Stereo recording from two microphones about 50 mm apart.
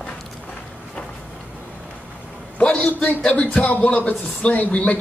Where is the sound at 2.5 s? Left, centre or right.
Left.